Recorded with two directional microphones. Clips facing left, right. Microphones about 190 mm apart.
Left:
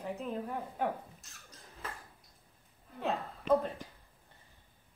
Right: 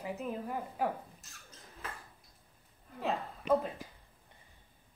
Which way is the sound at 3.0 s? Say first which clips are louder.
Even; centre (ahead or behind).